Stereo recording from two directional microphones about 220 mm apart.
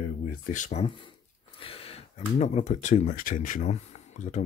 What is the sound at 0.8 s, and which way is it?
Speech, 25° left (ahead or behind).